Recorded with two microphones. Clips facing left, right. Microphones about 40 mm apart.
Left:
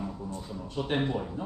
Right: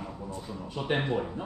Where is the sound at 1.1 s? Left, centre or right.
Right.